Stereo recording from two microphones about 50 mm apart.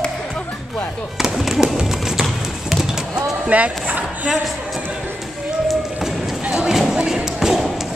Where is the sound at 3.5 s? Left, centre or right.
Right.